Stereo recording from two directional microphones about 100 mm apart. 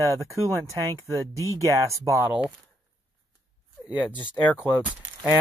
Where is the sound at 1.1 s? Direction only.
30° right (ahead or behind).